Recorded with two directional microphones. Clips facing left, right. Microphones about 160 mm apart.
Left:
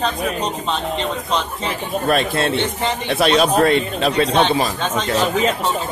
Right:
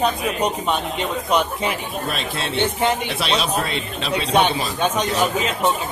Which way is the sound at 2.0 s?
50° left (ahead or behind).